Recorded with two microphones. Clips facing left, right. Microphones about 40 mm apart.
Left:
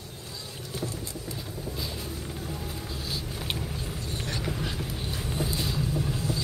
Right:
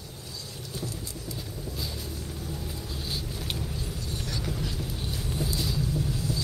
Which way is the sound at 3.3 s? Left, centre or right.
Left.